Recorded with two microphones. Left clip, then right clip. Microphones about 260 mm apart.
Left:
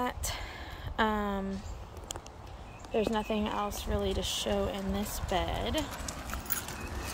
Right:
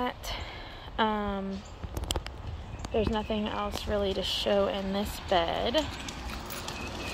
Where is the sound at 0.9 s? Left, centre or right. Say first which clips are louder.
Right 1 dB; centre.